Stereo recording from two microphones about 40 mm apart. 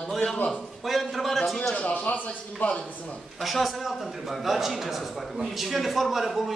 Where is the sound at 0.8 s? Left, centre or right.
Centre.